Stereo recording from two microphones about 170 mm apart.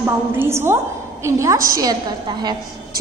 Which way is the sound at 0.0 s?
15° right (ahead or behind).